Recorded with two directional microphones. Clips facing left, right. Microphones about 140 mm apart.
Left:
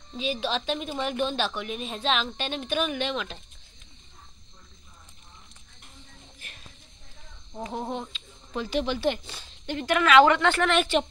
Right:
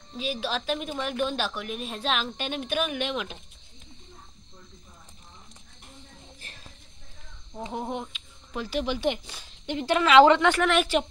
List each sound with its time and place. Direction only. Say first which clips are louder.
0.2 s a woman's voice: left 2 dB; 5° right (ahead or behind)
7.6 s speech: even; 15° right (ahead or behind)
9.8 s a woman's voice: right 2 dB; 25° right (ahead or behind)
10.4 s a woman's voice: right 1 dB; 10° right (ahead or behind)